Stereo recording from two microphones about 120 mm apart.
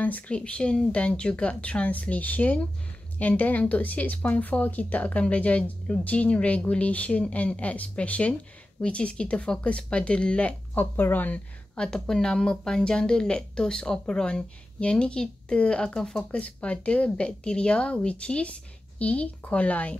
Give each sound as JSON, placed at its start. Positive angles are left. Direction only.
{"t": 0.0, "sound": "speech", "side_deg": 10}